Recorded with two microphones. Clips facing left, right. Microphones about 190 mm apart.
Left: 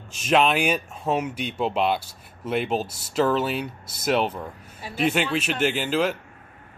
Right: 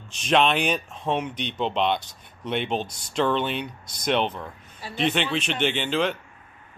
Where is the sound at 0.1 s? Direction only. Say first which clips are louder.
Left 1 dB; 5° left (ahead or behind).